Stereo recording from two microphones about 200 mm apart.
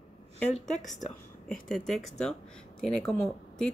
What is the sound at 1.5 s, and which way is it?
Speech, 5° left (ahead or behind).